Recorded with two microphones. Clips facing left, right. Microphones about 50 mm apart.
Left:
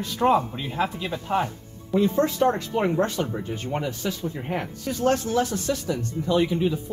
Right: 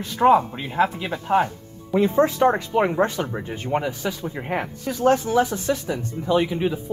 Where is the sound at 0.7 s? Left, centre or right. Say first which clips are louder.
Right 5 dB; centre.